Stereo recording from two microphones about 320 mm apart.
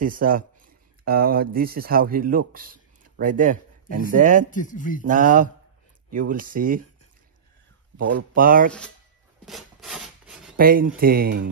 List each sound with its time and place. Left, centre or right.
0.0 s speech: right
4.5 s speech: left
5.0 s speech: right
8.0 s speech: right
9.5 s rub: centre
10.6 s speech: right